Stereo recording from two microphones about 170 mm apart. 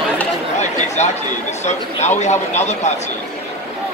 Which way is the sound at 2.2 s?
40° left (ahead or behind).